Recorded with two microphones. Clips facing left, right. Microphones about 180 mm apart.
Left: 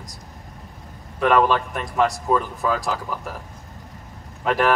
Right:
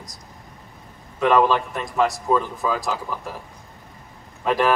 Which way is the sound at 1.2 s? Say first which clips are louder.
Even; 15° right (ahead or behind).